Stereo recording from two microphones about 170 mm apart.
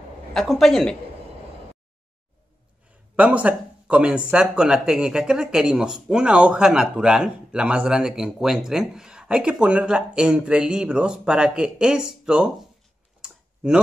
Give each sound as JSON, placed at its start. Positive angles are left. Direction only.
{"t": 0.3, "sound": "speech", "side_deg": 0}
{"t": 3.2, "sound": "speech", "side_deg": -10}
{"t": 13.2, "sound": "tick-tock", "side_deg": -5}